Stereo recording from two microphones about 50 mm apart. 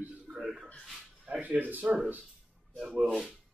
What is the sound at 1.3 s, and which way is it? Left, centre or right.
Speech, right.